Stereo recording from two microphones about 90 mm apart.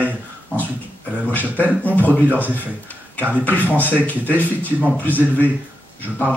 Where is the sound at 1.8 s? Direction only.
20° left (ahead or behind).